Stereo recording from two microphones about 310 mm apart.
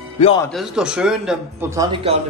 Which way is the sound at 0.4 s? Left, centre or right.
Centre.